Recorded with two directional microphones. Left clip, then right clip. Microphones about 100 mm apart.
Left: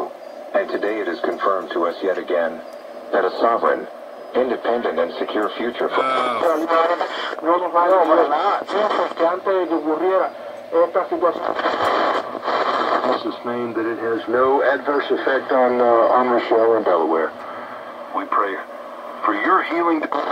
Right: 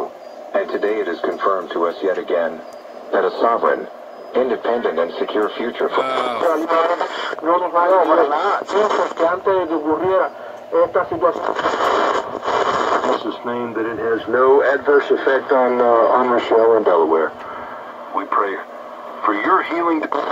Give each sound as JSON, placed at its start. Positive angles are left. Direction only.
{"t": 0.5, "sound": "radio", "side_deg": -35}
{"t": 3.1, "sound": "speech", "side_deg": -35}
{"t": 6.1, "sound": "speech", "side_deg": 0}
{"t": 6.4, "sound": "speech", "side_deg": -35}